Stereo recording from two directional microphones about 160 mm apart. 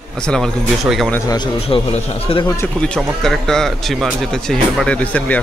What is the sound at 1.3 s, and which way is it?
A man's voice, 30° left (ahead or behind).